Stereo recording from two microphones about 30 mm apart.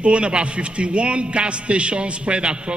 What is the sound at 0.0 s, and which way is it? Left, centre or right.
A man's voice, right.